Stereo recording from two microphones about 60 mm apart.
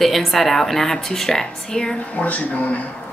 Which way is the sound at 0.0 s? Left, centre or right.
Centre.